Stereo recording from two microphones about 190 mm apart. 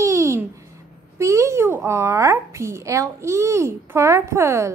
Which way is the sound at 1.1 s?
15° right (ahead or behind).